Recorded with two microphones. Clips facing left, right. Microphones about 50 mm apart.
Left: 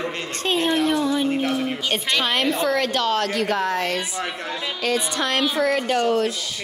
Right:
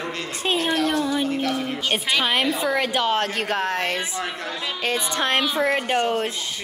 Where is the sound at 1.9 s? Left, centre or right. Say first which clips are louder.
Right 2 dB; centre.